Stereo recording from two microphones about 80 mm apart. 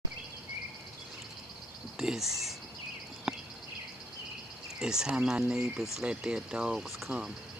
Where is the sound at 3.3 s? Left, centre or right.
Centre.